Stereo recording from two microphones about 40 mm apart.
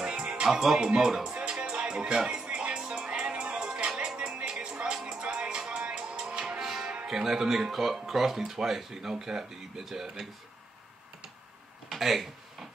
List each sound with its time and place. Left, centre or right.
0.0 s music: right
0.5 s speech: centre
1.3 s music: right
7.1 s speech: centre
11.9 s a sound: centre